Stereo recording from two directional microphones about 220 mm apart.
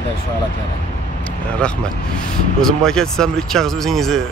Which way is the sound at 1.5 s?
5° left (ahead or behind).